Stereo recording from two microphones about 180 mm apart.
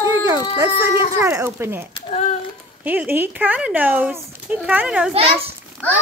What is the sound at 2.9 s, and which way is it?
Speech, 10° right (ahead or behind).